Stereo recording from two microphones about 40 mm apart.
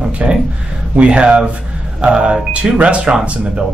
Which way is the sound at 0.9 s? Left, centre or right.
Right.